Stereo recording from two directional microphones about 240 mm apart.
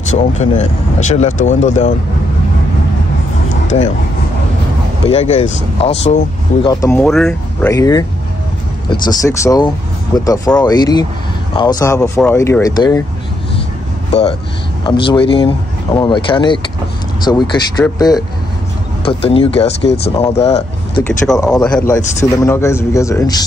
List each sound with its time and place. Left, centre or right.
0.4 s speech: left
5.1 s speech: left
6.7 s a man's voice: centre
7.7 s a man's voice: centre
14.9 s a man's voice: left
21.0 s a man's voice: centre